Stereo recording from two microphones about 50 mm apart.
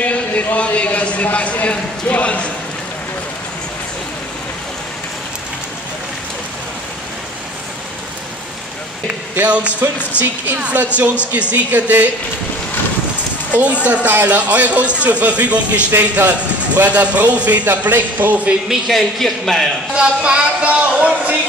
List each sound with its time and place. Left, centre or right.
0.0 s a man's voice: left
9.4 s a man's voice: right
13.5 s a man's voice: right
18.7 s a man's voice: centre
19.9 s a man's voice: centre